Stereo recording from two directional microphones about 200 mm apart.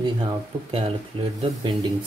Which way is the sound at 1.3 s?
25° right (ahead or behind).